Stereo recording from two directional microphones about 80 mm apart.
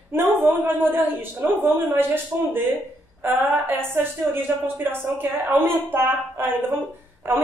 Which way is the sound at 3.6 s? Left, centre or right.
Right.